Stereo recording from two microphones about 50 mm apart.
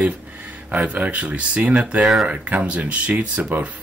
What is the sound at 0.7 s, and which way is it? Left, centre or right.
Speech, right.